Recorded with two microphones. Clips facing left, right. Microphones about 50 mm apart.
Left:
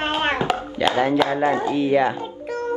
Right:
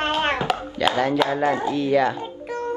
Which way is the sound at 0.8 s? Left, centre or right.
Centre.